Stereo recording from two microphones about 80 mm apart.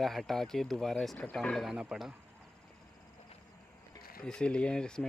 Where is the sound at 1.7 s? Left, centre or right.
Centre.